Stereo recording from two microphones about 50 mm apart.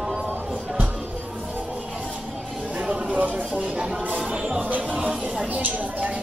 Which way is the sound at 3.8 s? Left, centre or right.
Centre.